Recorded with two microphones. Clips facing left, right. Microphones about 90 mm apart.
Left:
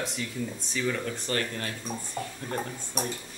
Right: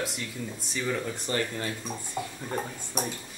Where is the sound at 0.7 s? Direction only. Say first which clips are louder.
Even; 15° right (ahead or behind).